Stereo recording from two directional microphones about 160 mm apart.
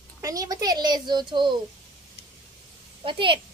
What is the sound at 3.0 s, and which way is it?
Speech, 35° right (ahead or behind).